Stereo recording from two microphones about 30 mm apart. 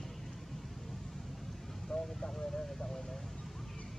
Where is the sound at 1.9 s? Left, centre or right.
Left.